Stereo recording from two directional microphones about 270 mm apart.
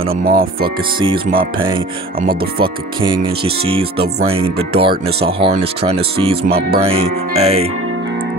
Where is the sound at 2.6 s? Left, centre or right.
Centre.